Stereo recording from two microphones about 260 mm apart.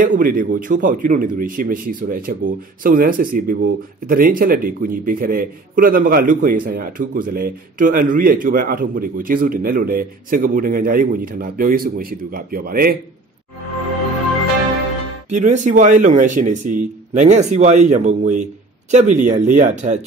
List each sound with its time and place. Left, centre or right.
0.0 s speech: right
15.2 s speech: right